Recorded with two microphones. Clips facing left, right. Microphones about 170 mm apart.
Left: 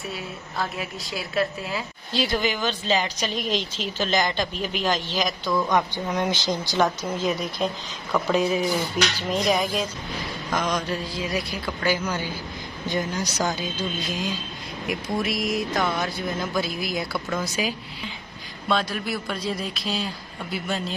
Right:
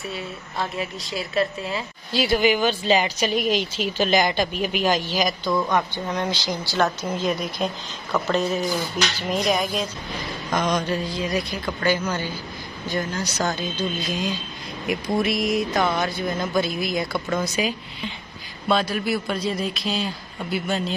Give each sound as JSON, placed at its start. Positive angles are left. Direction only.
{"t": 0.1, "sound": "a woman's voice", "side_deg": 0}
{"t": 6.1, "sound": "speech", "side_deg": 20}
{"t": 7.4, "sound": "speech", "side_deg": -5}
{"t": 8.3, "sound": "speech", "side_deg": 10}
{"t": 9.2, "sound": "a woman's voice", "side_deg": -5}